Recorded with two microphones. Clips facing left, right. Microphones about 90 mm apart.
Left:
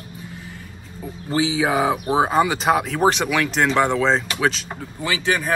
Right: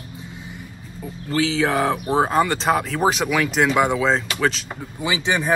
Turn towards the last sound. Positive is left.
turn(degrees=-20)  # may be behind; listen again after turning